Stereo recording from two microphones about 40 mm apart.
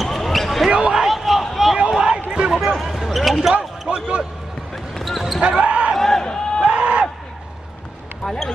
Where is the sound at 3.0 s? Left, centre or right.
Centre.